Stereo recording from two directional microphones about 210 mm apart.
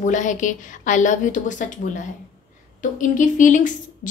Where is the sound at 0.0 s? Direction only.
35° left (ahead or behind).